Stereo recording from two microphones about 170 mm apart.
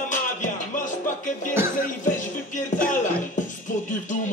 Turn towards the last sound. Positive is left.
turn(degrees=45)  # may be behind; listen again after turning